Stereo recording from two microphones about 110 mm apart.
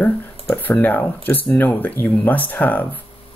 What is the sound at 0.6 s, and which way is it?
Speech, 15° left (ahead or behind).